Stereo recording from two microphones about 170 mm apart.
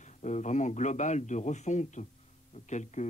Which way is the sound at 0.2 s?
45° left (ahead or behind).